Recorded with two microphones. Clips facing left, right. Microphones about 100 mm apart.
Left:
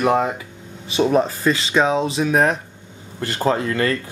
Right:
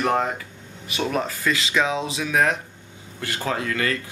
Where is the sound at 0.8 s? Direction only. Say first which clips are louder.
Left 8 dB; 30° left (ahead or behind).